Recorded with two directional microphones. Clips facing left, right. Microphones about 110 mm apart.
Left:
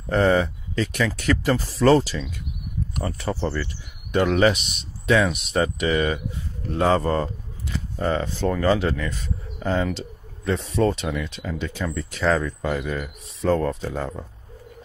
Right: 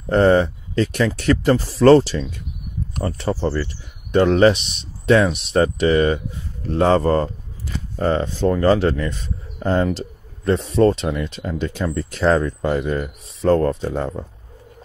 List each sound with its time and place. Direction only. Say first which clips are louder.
0.1 s speech: right 5 dB; 40° right (ahead or behind)
10.9 s speech: right 5 dB; 30° right (ahead or behind)